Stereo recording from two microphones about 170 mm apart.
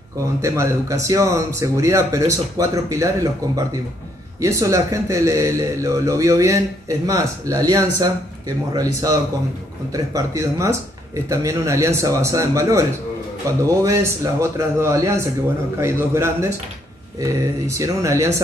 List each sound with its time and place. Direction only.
0.4 s speech: 15° right (ahead or behind)
4.4 s speech: 20° right (ahead or behind)